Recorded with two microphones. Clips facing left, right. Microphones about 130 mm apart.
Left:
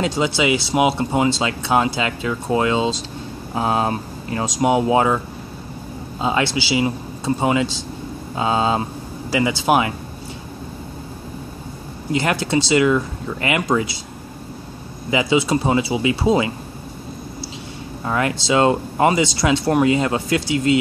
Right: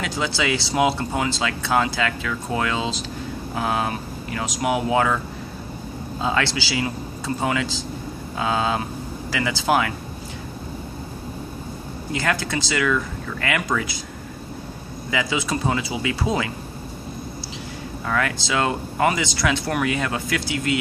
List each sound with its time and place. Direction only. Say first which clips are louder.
0.0 s speech: left 5 dB; 25° left (ahead or behind)
6.2 s speech: left 3 dB; 20° left (ahead or behind)
12.1 s speech: left 5 dB; 20° left (ahead or behind)
15.0 s speech: left 7 dB; 25° left (ahead or behind)
18.0 s speech: left 4 dB; 25° left (ahead or behind)